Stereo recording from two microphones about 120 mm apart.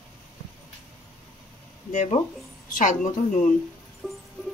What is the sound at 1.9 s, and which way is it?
A woman's voice, 90° left.